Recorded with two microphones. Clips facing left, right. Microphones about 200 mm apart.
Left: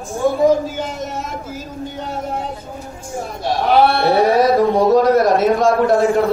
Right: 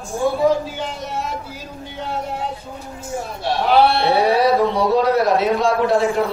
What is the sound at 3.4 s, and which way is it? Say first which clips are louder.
Speech: left 1 dB; 45° left (ahead or behind).